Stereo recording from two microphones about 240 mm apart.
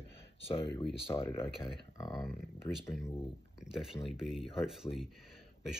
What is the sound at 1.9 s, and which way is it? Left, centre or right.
Speech, centre.